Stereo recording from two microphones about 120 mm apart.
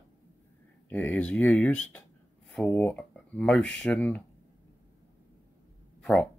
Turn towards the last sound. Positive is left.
turn(degrees=5)  # may be behind; listen again after turning